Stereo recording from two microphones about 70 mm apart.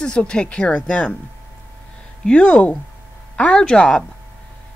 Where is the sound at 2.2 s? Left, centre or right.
Centre.